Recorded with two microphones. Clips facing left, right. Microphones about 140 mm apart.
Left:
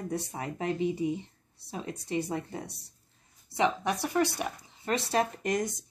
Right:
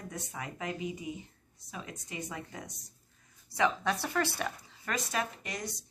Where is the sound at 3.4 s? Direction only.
20° left (ahead or behind).